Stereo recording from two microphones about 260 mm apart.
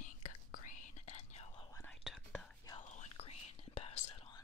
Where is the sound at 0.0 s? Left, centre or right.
Left; by 2.7 s centre.